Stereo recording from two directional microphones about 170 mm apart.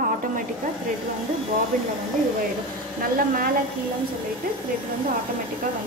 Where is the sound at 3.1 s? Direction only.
55° right (ahead or behind).